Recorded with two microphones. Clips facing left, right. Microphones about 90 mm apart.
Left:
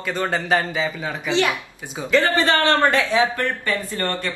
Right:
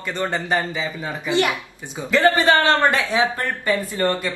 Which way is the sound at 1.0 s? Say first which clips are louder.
Right 2 dB; 15° right (ahead or behind).